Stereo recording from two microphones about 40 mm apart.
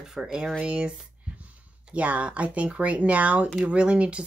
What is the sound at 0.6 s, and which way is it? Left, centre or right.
Speech, right.